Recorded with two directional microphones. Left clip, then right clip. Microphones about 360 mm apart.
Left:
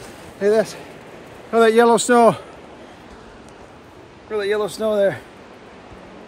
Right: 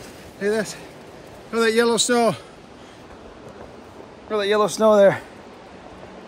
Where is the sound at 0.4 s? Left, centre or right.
Centre.